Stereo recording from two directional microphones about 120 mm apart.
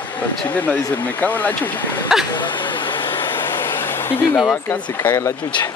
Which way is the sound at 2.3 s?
40° left (ahead or behind).